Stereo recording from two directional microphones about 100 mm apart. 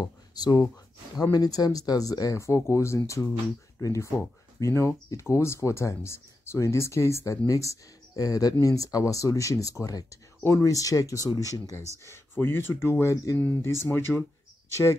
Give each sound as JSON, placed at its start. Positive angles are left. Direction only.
{"t": 0.0, "sound": "speech", "side_deg": 40}
{"t": 12.1, "sound": "speech", "side_deg": 25}